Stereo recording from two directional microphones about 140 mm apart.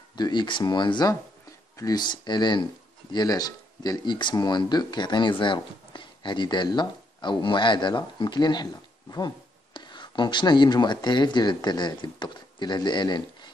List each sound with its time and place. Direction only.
0.1 s speech: 30° left (ahead or behind)
9.8 s speech: 35° left (ahead or behind)